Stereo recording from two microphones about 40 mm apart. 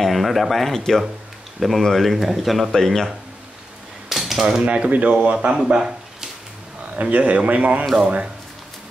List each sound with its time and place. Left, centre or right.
0.0 s speech: centre
2.7 s speech: centre
4.1 s cutlery: centre
4.6 s speech: right
5.7 s a sound: centre
7.0 s speech: right